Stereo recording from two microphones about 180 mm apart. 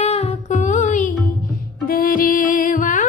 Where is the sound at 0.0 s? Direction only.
35° left (ahead or behind).